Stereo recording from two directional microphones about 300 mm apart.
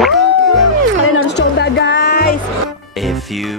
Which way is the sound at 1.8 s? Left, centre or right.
Left.